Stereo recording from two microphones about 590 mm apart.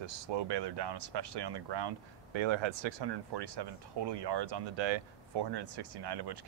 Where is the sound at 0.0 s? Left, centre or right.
Right.